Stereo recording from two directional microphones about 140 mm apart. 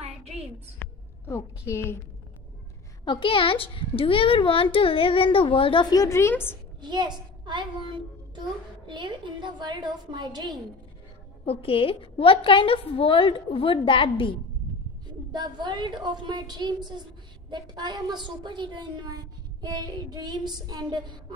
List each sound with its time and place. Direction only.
0.0 s a sound: 50° right (ahead or behind)
0.7 s a woman's voice: 20° left (ahead or behind)
3.1 s a child's voice: 40° left (ahead or behind); by 6.6 s 15° left (ahead or behind)
6.8 s a woman's voice: 30° right (ahead or behind)
11.4 s a child's voice: 40° left (ahead or behind)
15.0 s a woman's voice: 30° right (ahead or behind)